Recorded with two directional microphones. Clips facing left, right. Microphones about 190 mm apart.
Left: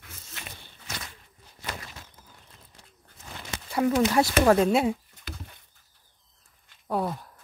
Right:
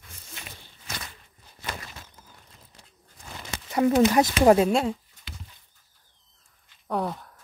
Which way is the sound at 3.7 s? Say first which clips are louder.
Right 3 dB; 25° right (ahead or behind).